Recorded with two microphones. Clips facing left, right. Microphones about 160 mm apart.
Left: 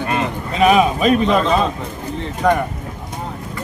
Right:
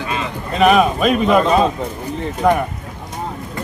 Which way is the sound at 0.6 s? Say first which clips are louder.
Right 1 dB; centre (ahead or behind).